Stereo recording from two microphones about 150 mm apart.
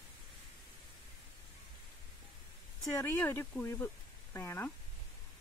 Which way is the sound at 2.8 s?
20° left (ahead or behind).